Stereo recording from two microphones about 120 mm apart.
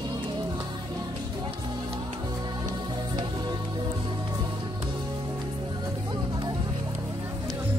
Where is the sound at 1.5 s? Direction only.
45° right (ahead or behind).